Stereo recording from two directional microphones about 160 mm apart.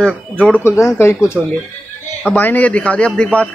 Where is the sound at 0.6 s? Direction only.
15° left (ahead or behind).